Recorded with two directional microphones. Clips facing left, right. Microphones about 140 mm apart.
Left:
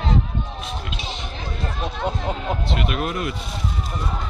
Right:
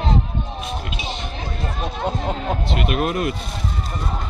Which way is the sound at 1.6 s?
15° right (ahead or behind).